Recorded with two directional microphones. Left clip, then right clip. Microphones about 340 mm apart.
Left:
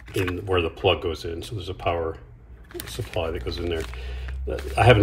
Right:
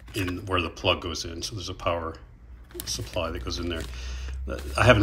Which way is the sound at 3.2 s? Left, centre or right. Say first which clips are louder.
Left 4 dB; centre.